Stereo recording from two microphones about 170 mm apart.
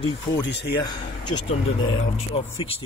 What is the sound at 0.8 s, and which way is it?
Speech, 25° left (ahead or behind).